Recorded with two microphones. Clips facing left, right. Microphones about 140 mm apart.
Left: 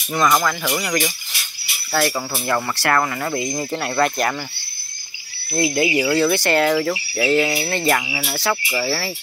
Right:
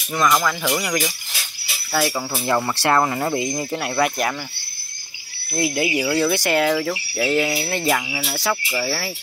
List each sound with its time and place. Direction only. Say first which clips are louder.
0.5 s speech: even; 10° right (ahead or behind)
3.4 s speech: left 1 dB; 5° right (ahead or behind)
5.5 s speech: left 2 dB; 5° right (ahead or behind)
8.0 s speech: left 1 dB; 5° left (ahead or behind)